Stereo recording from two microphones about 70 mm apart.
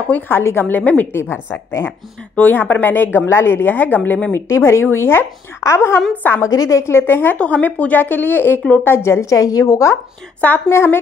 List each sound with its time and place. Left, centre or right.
0.1 s speech: left
1.1 s speech: left
4.5 s speech: left
7.3 s speech: centre
8.8 s a woman's voice: left
10.4 s speech: left